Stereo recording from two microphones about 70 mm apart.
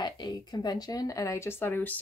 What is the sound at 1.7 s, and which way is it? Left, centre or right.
Speech, left.